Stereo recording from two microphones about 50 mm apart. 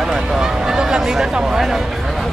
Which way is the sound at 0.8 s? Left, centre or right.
Centre.